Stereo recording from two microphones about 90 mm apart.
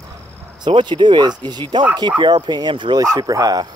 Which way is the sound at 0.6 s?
65° right (ahead or behind).